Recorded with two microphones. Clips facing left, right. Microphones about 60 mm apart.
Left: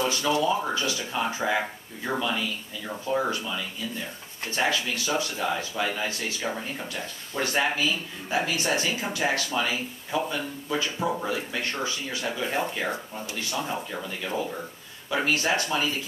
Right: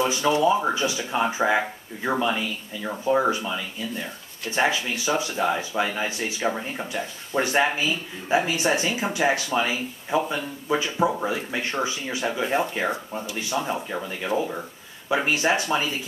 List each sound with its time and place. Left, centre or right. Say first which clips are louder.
0.0 s speech: right 4 dB; right